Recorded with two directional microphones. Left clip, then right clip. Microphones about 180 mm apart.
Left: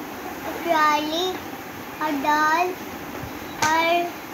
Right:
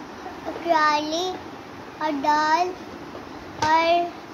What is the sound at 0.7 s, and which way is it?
Speech, 25° right (ahead or behind).